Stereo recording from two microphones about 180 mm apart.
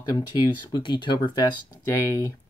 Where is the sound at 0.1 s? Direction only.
20° left (ahead or behind).